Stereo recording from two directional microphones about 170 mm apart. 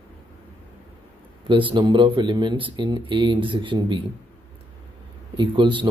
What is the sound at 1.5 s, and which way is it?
Speech, 30° right (ahead or behind).